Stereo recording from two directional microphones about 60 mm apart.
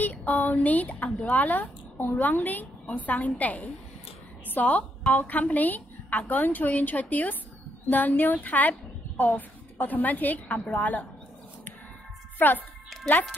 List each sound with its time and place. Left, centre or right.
0.0 s a woman's voice: left
12.4 s a child's voice: left
12.9 s music: centre